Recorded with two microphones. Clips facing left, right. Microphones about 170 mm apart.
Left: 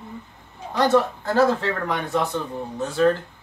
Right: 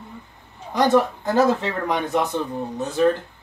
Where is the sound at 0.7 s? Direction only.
15° right (ahead or behind).